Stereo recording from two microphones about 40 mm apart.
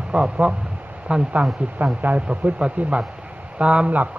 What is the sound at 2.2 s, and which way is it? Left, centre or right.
Speech, right.